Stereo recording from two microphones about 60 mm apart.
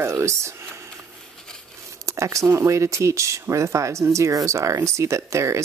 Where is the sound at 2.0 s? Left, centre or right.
Right.